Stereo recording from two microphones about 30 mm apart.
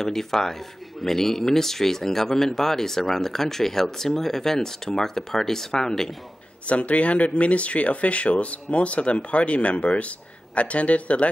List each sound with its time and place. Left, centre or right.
0.0 s speech: centre
6.6 s speech: left